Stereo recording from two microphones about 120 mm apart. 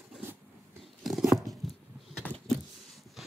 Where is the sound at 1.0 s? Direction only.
Centre (ahead or behind).